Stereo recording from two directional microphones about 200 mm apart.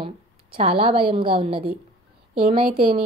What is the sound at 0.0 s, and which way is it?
A woman's voice, 25° right (ahead or behind).